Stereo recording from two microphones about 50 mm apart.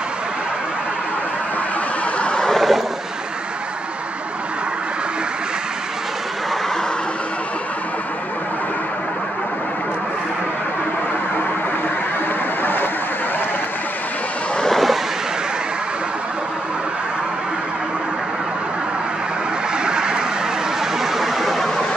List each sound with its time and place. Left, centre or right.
2.1 s vehicle: left
2.4 s vehicle: centre
14.6 s vehicle: centre
19.8 s vehicle: centre
21.0 s a sound: centre